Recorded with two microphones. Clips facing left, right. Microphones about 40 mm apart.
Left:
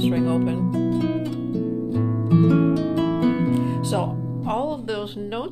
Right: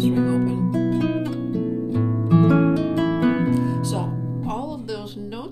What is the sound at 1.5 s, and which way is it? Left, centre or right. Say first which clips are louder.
Harp: even; right.